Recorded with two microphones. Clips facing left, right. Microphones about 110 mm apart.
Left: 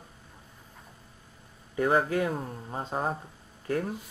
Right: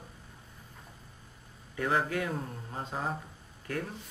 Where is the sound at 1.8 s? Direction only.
35° left (ahead or behind).